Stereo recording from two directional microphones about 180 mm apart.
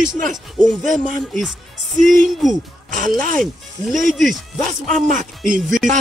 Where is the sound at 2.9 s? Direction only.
45° right (ahead or behind).